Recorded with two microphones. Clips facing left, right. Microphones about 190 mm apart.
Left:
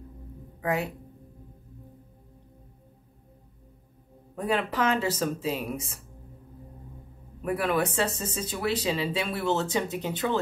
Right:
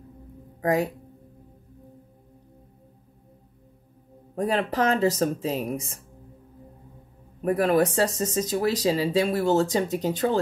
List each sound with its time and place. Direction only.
0.6 s speech: 40° right (ahead or behind)
4.4 s speech: 40° right (ahead or behind)
7.4 s speech: 40° right (ahead or behind)